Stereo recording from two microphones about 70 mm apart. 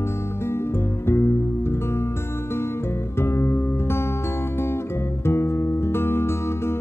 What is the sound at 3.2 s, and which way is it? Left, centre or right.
Music, left.